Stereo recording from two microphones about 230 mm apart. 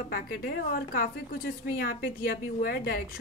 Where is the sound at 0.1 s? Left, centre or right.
Left.